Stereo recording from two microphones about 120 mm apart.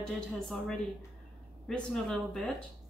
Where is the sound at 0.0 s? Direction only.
5° left (ahead or behind).